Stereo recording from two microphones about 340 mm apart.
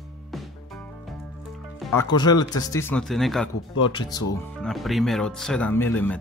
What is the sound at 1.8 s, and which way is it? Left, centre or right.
Speech, centre.